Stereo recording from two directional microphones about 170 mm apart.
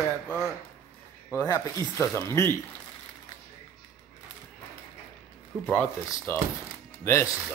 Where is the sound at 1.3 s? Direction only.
20° left (ahead or behind).